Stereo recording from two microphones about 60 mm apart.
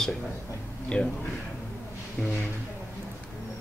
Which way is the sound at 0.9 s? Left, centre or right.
Centre.